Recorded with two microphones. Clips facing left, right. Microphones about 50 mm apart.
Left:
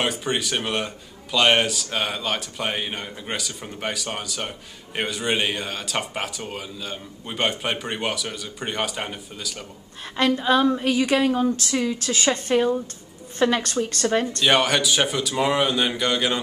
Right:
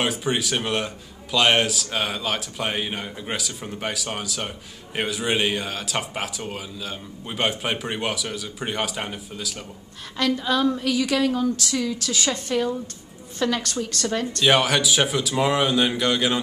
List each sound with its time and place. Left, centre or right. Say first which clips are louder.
0.0 s speech: right 1 dB; centre
10.1 s a woman's voice: left 3 dB; left
14.4 s speech: right 2 dB; centre